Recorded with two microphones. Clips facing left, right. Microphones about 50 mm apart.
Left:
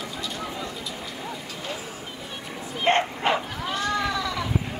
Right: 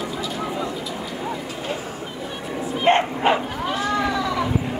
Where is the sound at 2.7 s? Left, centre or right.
Centre.